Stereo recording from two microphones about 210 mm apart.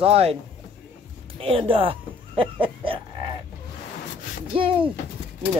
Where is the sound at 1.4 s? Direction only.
25° right (ahead or behind).